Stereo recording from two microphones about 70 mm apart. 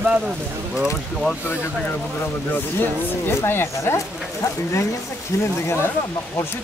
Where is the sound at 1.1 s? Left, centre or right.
Centre.